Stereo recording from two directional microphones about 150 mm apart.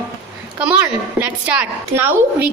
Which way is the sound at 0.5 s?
5° right (ahead or behind).